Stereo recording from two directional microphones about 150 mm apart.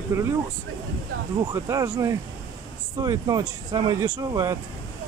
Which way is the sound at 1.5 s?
20° right (ahead or behind).